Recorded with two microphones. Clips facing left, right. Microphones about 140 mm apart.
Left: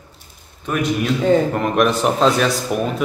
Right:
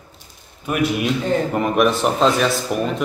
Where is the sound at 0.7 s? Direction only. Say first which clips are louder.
Even; 5° right (ahead or behind).